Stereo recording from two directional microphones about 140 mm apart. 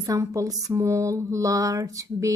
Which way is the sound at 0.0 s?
25° right (ahead or behind).